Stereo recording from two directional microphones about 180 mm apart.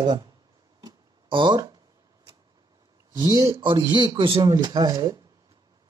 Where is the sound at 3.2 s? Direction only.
20° right (ahead or behind).